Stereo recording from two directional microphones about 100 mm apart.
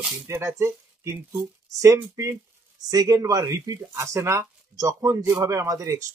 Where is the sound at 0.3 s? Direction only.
30° right (ahead or behind).